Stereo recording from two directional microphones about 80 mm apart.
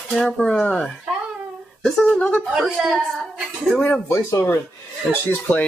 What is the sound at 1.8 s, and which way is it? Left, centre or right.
Speech, centre.